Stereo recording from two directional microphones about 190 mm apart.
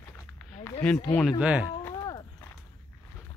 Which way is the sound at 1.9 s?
20° left (ahead or behind).